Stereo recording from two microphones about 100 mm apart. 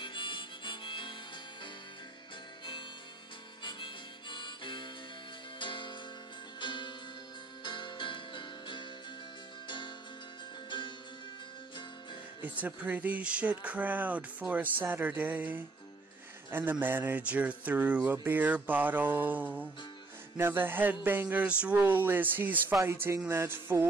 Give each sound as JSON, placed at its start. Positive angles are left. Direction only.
{"t": 0.0, "sound": "harmonica", "side_deg": 55}
{"t": 3.6, "sound": "harmonica", "side_deg": 55}
{"t": 5.6, "sound": "music", "side_deg": 55}
{"t": 11.7, "sound": "music", "side_deg": 50}
{"t": 12.4, "sound": "a man's voice", "side_deg": -15}
{"t": 20.3, "sound": "a sound", "side_deg": -20}